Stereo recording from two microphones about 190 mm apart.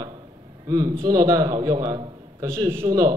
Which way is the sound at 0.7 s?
20° right (ahead or behind).